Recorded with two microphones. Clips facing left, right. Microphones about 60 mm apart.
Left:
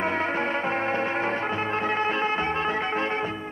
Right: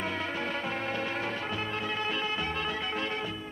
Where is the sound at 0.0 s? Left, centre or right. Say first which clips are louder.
Left 7 dB; left.